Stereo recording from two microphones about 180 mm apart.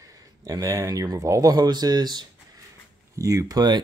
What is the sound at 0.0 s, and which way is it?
Speech, 20° right (ahead or behind).